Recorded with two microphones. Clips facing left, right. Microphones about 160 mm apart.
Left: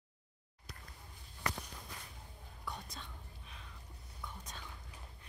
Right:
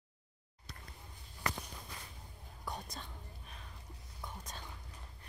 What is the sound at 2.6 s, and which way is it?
Whispering, 40° right (ahead or behind).